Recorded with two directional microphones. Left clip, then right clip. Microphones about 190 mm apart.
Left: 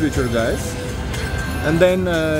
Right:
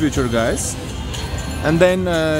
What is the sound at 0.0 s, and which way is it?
Speech, 15° right (ahead or behind).